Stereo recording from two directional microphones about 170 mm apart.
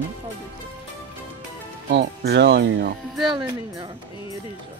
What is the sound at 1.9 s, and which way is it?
Speech, 90° right.